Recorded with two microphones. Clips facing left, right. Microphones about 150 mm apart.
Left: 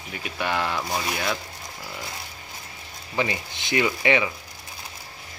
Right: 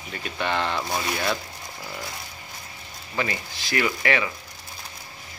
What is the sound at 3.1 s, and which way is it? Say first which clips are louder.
Speech: left 2 dB; 20° left (ahead or behind).